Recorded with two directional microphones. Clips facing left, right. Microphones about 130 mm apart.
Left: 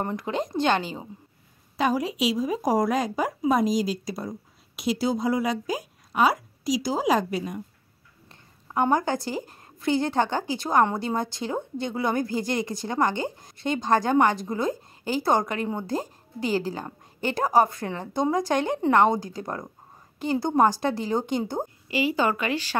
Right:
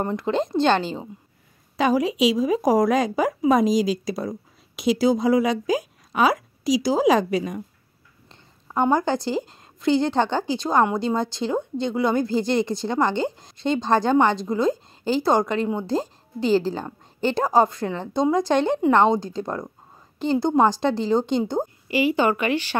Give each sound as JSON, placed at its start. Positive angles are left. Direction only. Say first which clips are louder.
{"t": 0.2, "sound": "a woman's voice", "louder": "right 7 dB", "side_deg": -30}
{"t": 1.8, "sound": "a woman's voice", "louder": "right 5 dB", "side_deg": -90}
{"t": 8.3, "sound": "a woman's voice", "louder": "right 1 dB", "side_deg": -25}
{"t": 21.8, "sound": "speech", "louder": "right 4 dB", "side_deg": 30}
{"t": 22.1, "sound": "a woman's voice", "louder": "right 4 dB", "side_deg": -25}